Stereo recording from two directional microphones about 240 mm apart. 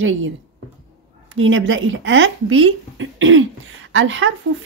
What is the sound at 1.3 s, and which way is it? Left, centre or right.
Speech, right.